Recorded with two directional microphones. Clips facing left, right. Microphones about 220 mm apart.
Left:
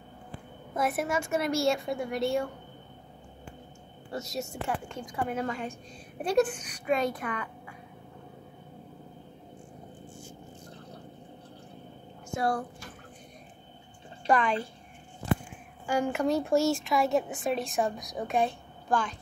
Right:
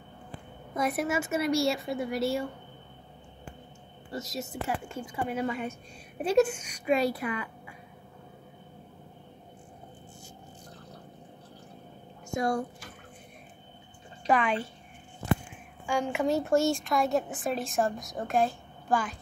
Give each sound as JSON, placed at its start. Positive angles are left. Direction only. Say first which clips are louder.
{"t": 0.7, "sound": "a woman's voice", "louder": "even", "side_deg": 0}
{"t": 4.1, "sound": "a woman's voice", "louder": "left 1 dB", "side_deg": 0}
{"t": 6.5, "sound": "a woman's voice", "louder": "even", "side_deg": 35}
{"t": 6.9, "sound": "speech", "louder": "right 2 dB", "side_deg": -10}
{"t": 14.2, "sound": "a woman's voice", "louder": "even", "side_deg": -5}
{"t": 15.9, "sound": "a woman's voice", "louder": "left 1 dB", "side_deg": 0}